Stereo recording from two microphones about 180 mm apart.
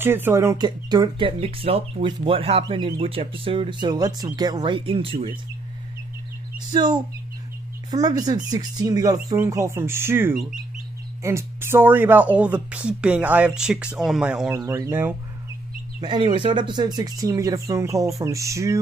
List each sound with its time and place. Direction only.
0.0 s speech: 10° right (ahead or behind); by 5.3 s 30° right (ahead or behind)
6.7 s speech: 25° right (ahead or behind); by 14.5 s 5° right (ahead or behind)
14.5 s speech: 15° right (ahead or behind)
16.0 s speech: 25° right (ahead or behind)